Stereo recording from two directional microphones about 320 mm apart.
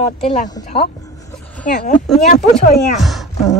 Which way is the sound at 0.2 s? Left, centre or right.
Centre.